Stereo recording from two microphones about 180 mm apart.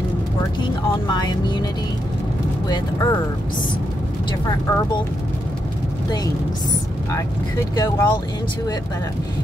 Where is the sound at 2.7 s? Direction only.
20° left (ahead or behind).